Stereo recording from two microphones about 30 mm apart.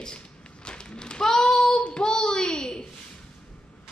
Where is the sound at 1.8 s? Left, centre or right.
Left.